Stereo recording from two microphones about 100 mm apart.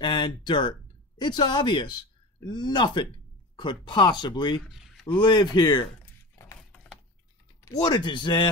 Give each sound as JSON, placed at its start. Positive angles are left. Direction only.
{"t": 0.0, "sound": "speech", "side_deg": 50}
{"t": 4.6, "sound": "a sound", "side_deg": -5}
{"t": 5.0, "sound": "speech", "side_deg": 50}
{"t": 7.6, "sound": "speech", "side_deg": 45}